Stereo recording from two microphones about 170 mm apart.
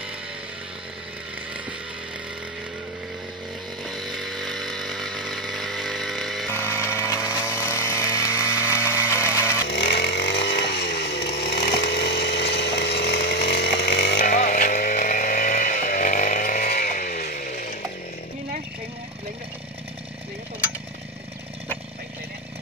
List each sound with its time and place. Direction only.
3.8 s chainsaw: centre (ahead or behind)
6.5 s chainsaw: 15° left (ahead or behind)
9.7 s chainsaw: 80° left
14.3 s vehicle: 45° left (ahead or behind)
17.4 s chainsaw: 50° left (ahead or behind)